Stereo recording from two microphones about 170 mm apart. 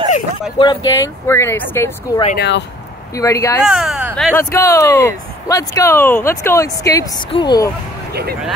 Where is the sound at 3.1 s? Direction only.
20° left (ahead or behind).